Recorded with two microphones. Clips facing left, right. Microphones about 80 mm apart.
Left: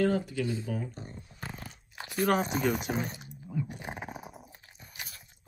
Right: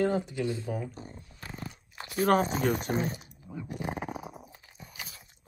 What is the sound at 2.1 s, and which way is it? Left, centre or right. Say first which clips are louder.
Speech: right 2 dB; right.